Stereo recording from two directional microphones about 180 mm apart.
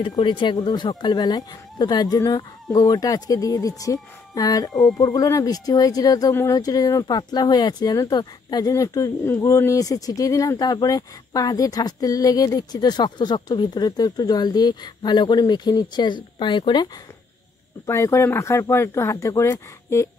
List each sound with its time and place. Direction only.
0.0 s speech: 25° left (ahead or behind)
17.8 s speech: 15° left (ahead or behind)